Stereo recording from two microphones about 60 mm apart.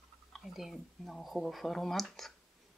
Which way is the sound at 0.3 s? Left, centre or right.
Centre.